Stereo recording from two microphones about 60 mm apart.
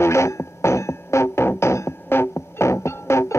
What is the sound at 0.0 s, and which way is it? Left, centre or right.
Music, left.